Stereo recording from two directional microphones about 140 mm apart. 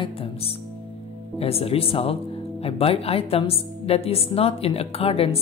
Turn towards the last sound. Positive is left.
turn(degrees=45)  # may be behind; listen again after turning